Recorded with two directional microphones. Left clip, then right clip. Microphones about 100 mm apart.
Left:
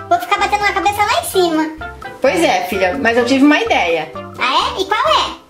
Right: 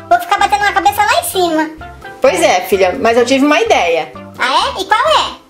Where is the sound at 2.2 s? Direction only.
35° right (ahead or behind).